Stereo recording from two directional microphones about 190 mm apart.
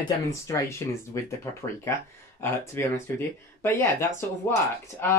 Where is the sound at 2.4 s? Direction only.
15° left (ahead or behind).